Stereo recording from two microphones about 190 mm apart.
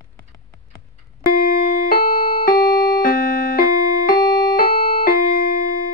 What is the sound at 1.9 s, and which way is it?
Music, 50° left (ahead or behind).